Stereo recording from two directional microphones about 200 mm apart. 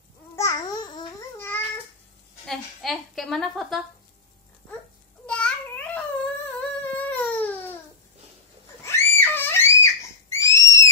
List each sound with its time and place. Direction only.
0.4 s babbling: 20° left (ahead or behind)
2.4 s a woman's voice: centre (ahead or behind)
5.2 s humming: 5° left (ahead or behind)
8.8 s a sound: 10° left (ahead or behind)